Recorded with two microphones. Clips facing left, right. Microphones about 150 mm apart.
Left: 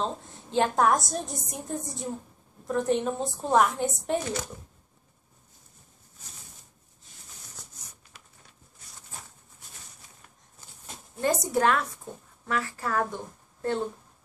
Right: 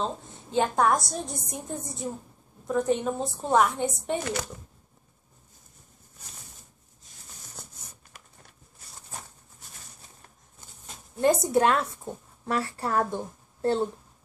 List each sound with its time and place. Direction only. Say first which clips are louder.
0.0 s a woman's voice: even; centre (ahead or behind)
11.1 s a woman's voice: right 4 dB; 25° right (ahead or behind)